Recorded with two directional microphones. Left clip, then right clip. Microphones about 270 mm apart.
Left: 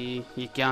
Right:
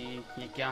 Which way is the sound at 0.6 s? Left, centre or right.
Left.